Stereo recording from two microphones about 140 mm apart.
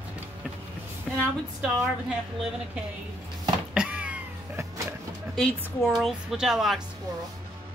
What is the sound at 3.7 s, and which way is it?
Cat, 10° right (ahead or behind).